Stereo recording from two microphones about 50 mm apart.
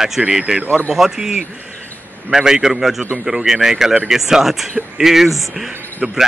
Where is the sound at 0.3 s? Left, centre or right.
Centre.